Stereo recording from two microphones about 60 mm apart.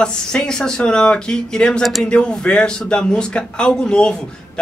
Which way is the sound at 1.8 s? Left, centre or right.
Centre.